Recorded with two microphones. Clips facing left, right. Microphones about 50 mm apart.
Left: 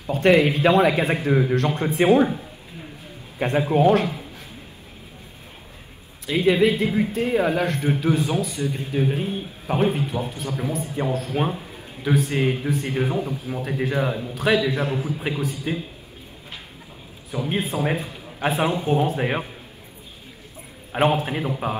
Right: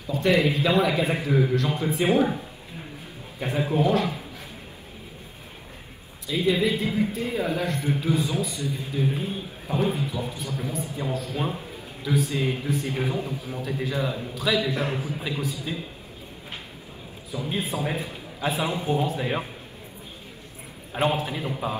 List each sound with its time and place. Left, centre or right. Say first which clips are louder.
0.0 s a man's voice: left 5 dB; left
3.3 s a man's voice: left 5 dB; left
6.2 s a man's voice: left 5 dB; left
17.3 s a man's voice: left 4 dB; left
21.0 s a man's voice: left 4 dB; left